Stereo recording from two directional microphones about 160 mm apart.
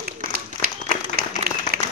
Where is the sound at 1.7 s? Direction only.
75° right (ahead or behind).